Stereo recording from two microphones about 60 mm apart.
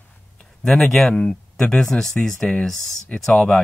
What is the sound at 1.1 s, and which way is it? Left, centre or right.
Speech, centre.